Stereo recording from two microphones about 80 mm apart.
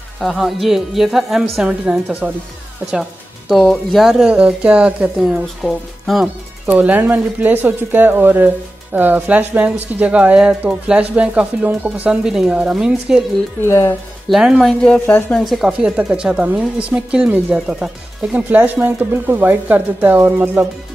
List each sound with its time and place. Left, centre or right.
0.2 s a woman's voice: centre
2.9 s speech: centre
3.6 s speech: centre
4.0 s speech: centre
5.2 s a woman's voice: centre
6.2 s speech: centre
12.3 s speech: centre
13.6 s speech: left
14.3 s speech: centre
14.6 s speech: centre
15.0 s speech: left
15.3 s a woman's voice: centre
15.8 s speech: centre
18.3 s speech: right